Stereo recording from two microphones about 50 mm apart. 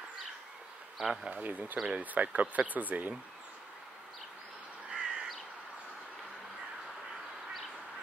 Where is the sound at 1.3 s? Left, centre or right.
Right.